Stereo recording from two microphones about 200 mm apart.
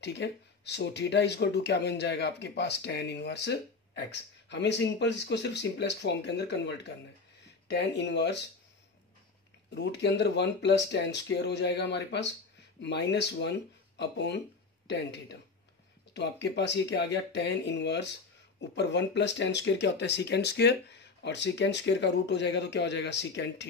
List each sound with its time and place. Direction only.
0.0 s speech: 60° left (ahead or behind)
9.8 s speech: 60° left (ahead or behind)